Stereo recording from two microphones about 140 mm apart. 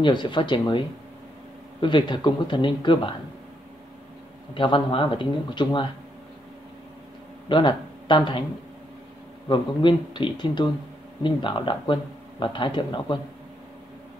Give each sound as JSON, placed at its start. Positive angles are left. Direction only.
{"t": 0.0, "sound": "speech", "side_deg": 35}
{"t": 4.6, "sound": "speech", "side_deg": 35}
{"t": 7.4, "sound": "speech", "side_deg": 35}
{"t": 9.5, "sound": "speech", "side_deg": 35}